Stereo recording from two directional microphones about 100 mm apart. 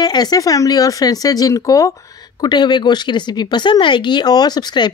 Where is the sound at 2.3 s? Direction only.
45° left (ahead or behind).